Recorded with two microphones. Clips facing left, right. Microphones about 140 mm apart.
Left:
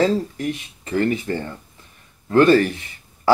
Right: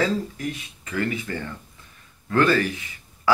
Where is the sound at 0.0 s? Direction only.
30° left (ahead or behind).